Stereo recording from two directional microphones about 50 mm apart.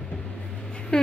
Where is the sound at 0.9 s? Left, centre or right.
Centre.